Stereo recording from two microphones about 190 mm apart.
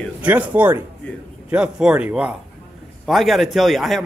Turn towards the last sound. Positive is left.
turn(degrees=0)  # may be behind; listen again after turning